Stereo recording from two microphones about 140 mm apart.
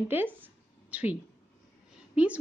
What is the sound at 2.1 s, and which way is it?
Speech, 10° right (ahead or behind).